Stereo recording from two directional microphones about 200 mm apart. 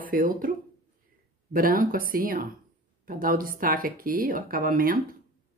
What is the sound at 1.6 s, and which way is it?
Speech, 45° right (ahead or behind).